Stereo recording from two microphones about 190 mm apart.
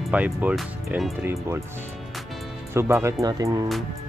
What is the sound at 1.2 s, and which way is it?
Speech, 15° right (ahead or behind).